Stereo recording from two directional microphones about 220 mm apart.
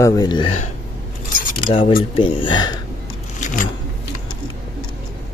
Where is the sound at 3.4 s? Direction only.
35° left (ahead or behind).